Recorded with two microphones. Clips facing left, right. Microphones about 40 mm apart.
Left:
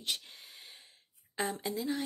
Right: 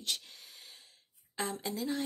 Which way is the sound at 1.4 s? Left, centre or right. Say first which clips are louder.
Left 1 dB; centre.